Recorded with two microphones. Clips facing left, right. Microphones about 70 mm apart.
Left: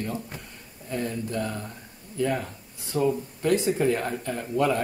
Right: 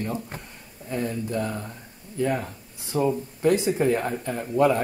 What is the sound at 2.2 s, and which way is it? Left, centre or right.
Speech, centre.